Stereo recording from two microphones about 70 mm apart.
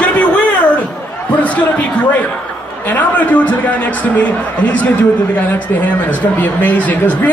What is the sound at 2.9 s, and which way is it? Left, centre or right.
Speech, left.